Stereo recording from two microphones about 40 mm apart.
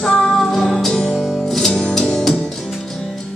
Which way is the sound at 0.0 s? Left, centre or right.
Centre.